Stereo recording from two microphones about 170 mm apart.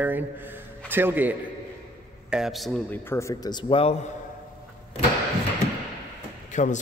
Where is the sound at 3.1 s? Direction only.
20° left (ahead or behind).